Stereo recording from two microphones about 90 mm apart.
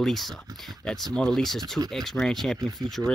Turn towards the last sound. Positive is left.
turn(degrees=5)  # may be behind; listen again after turning